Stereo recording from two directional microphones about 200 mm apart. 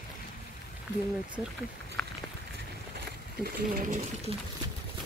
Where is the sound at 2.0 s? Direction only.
5° left (ahead or behind).